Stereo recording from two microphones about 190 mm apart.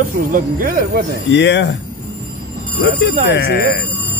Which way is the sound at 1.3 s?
70° left (ahead or behind).